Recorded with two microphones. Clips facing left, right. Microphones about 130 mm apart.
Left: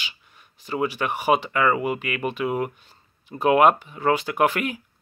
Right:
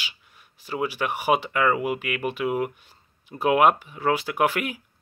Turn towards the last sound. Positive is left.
turn(degrees=-10)  # may be behind; listen again after turning